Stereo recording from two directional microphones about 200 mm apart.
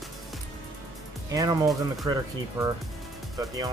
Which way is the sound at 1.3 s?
15° right (ahead or behind).